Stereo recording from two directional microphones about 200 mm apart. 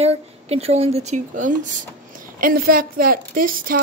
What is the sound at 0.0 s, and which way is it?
A woman's voice, 30° right (ahead or behind).